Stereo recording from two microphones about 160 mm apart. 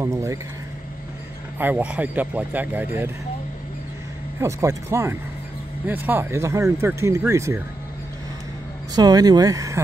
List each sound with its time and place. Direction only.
0.0 s speech: 20° right (ahead or behind)
1.6 s speech: 10° right (ahead or behind)
4.4 s speech: 20° right (ahead or behind)
8.9 s speech: 25° right (ahead or behind)